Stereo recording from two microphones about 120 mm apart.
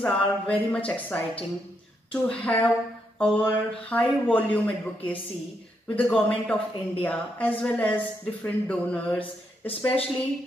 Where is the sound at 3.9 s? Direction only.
15° left (ahead or behind).